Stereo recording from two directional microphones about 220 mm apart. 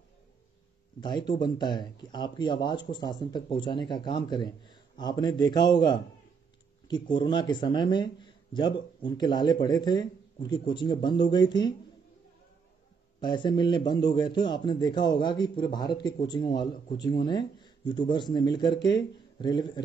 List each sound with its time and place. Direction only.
1.0 s a man's voice: 20° left (ahead or behind)
13.2 s a man's voice: 20° left (ahead or behind)